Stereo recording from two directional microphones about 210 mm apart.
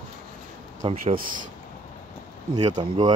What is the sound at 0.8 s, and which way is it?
Speech, 25° right (ahead or behind).